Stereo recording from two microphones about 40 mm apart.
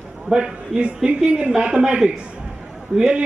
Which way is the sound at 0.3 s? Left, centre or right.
Right.